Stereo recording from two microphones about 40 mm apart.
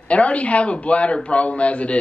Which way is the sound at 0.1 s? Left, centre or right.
Left.